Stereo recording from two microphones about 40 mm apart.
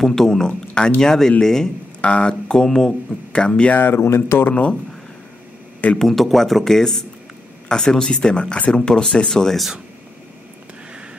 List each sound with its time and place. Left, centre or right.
0.0 s speech: centre
2.0 s speech: left
2.5 s speech: centre
3.3 s speech: left
3.7 s speech: left
4.5 s speech: left
5.9 s speech: centre